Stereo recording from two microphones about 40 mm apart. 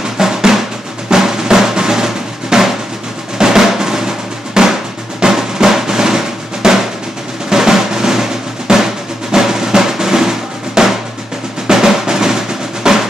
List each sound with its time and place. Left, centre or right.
0.2 s drum: centre